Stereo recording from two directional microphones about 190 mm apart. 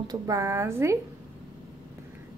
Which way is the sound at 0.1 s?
15° right (ahead or behind).